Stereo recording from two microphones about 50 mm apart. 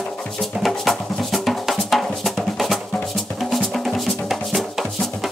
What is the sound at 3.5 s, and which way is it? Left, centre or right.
Music, centre.